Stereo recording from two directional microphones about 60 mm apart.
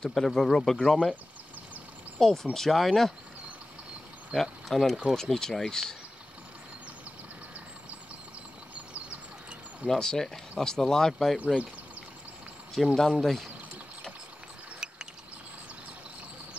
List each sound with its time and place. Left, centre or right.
0.0 s speech: centre
2.1 s speech: centre
4.3 s speech: centre
9.8 s speech: centre
11.3 s speech: left
12.7 s speech: centre